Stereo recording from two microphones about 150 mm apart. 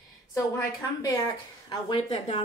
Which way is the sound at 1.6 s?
30° left (ahead or behind).